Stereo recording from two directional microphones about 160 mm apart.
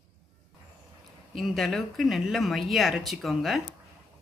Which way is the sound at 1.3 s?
Centre (ahead or behind).